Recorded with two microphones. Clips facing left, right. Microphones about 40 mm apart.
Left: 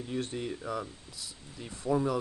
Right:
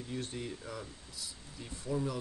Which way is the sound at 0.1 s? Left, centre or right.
Left.